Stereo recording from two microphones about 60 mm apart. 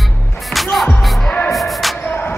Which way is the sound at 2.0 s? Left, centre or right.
Left.